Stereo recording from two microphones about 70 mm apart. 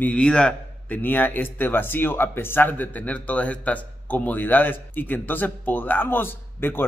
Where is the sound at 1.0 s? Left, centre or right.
Left.